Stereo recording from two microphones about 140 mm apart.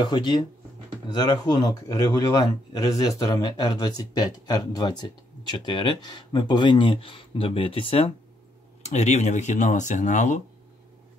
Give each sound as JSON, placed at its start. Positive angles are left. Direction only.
{"t": 0.0, "sound": "a man's voice", "side_deg": 35}
{"t": 8.8, "sound": "speech", "side_deg": 55}